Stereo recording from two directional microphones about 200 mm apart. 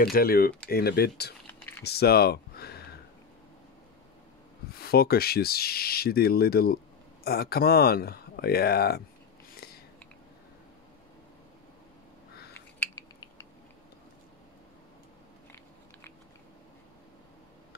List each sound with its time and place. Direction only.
0.0 s speech: 50° left (ahead or behind)
1.5 s typing: 10° left (ahead or behind)
1.9 s speech: 50° left (ahead or behind)
4.7 s speech: 50° left (ahead or behind)
12.7 s a sound: 15° left (ahead or behind)